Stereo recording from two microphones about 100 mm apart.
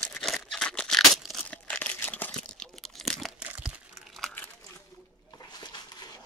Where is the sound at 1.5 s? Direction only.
15° left (ahead or behind).